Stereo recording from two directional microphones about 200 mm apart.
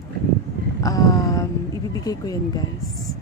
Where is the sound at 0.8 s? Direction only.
15° left (ahead or behind).